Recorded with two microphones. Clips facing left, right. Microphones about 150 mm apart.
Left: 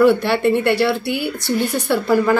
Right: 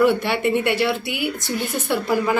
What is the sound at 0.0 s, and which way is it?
A woman's voice, 10° right (ahead or behind).